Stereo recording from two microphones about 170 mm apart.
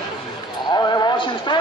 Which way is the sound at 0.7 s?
25° left (ahead or behind).